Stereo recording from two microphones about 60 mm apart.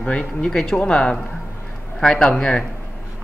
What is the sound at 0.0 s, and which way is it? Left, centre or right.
A man's voice, centre.